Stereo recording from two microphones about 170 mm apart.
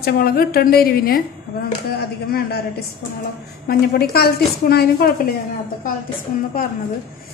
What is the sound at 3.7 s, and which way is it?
A woman's voice, 60° left (ahead or behind).